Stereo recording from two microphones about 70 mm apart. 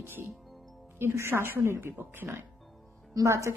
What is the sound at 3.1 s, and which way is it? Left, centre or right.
Speech, right.